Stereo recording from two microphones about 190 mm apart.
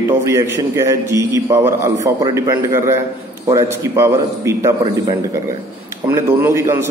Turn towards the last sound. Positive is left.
turn(degrees=-15)  # may be behind; listen again after turning